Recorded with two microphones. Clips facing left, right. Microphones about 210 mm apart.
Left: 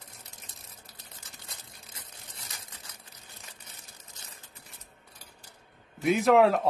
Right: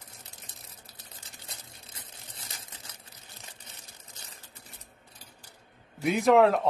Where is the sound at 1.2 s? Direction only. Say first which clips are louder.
Right 2 dB; 25° right (ahead or behind).